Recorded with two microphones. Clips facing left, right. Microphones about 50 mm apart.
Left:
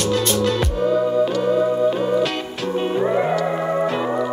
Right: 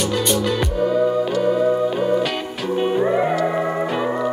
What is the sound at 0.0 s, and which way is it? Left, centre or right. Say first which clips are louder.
Music: left 1 dB; centre.